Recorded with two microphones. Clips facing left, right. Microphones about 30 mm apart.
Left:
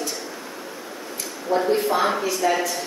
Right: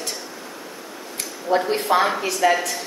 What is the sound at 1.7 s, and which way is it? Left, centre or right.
Speech, right.